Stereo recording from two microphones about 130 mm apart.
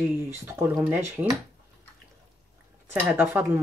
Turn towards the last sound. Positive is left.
turn(degrees=-15)  # may be behind; listen again after turning